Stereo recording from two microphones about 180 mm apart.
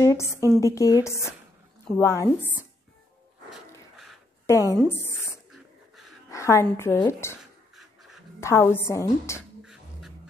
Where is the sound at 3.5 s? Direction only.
Centre (ahead or behind).